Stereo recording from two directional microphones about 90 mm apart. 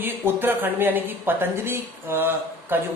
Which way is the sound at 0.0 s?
25° right (ahead or behind).